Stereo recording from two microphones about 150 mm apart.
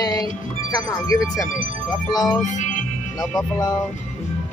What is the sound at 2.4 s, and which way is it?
Music, 55° left (ahead or behind).